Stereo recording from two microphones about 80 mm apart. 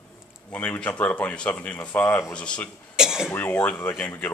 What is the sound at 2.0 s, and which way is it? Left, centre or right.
Speech, left.